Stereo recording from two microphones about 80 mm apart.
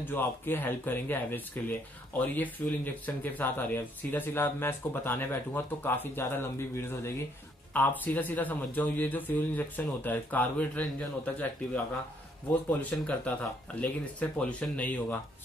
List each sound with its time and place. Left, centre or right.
0.0 s speech: left
13.0 s speech: centre